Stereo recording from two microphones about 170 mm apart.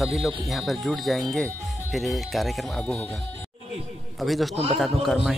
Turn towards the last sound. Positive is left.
turn(degrees=0)  # may be behind; listen again after turning